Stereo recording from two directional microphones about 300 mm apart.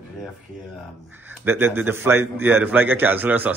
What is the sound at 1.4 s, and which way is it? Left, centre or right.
A man's voice, centre.